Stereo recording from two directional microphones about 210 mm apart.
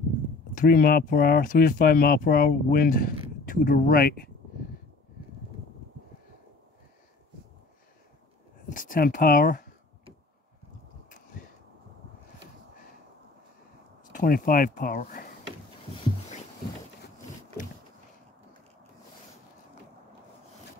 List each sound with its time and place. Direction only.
0.6 s speech: 45° left (ahead or behind)
8.6 s speech: 40° left (ahead or behind)
14.1 s speech: 45° left (ahead or behind)